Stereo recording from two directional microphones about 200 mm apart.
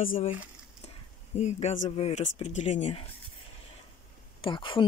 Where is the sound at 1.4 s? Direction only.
35° left (ahead or behind).